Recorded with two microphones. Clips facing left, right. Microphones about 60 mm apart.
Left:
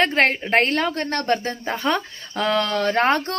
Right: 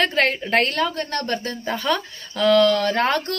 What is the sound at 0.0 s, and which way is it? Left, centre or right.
A woman's voice, left.